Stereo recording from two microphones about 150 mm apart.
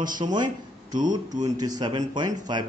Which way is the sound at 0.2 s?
30° right (ahead or behind).